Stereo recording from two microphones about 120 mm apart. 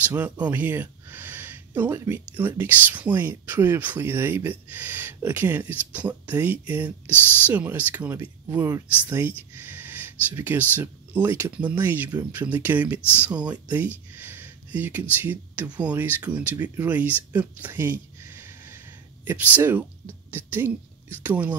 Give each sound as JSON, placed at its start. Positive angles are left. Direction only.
{"t": 0.1, "sound": "speech", "side_deg": -15}
{"t": 9.6, "sound": "a sound", "side_deg": -15}
{"t": 10.7, "sound": "a woman's voice", "side_deg": -15}